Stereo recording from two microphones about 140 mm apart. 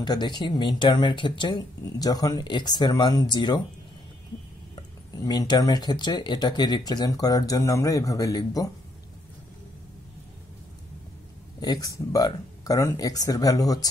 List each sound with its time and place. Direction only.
0.0 s speech: 30° left (ahead or behind)
5.2 s speech: 30° left (ahead or behind)
11.6 s speech: 25° left (ahead or behind)